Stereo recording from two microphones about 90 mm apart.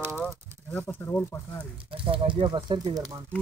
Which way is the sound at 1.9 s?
75° right (ahead or behind).